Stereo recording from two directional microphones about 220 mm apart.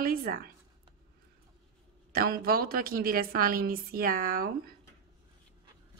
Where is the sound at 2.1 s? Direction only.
45° right (ahead or behind).